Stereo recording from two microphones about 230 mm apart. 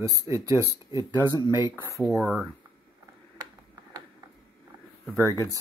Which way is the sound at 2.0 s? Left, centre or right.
Centre.